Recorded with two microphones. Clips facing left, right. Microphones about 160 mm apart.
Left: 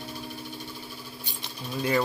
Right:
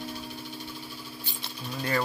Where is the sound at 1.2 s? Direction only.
20° left (ahead or behind).